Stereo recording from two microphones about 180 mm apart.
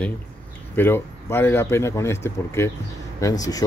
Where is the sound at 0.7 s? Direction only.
15° left (ahead or behind).